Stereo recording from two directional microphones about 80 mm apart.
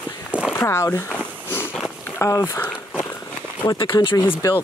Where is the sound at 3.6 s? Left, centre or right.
Left.